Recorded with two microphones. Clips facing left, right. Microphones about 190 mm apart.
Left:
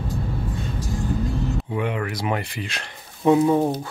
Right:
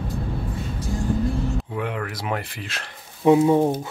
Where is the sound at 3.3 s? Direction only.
15° right (ahead or behind).